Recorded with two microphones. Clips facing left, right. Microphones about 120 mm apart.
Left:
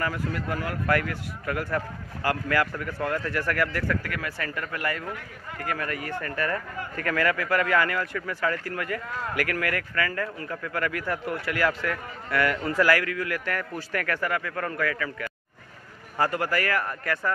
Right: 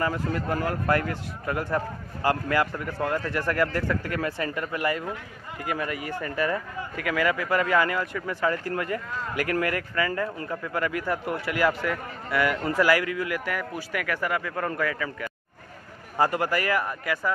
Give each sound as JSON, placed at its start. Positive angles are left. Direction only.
{"t": 0.0, "sound": "a man's voice", "side_deg": -25}